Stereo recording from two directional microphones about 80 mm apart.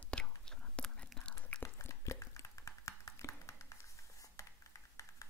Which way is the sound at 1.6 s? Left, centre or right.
Left.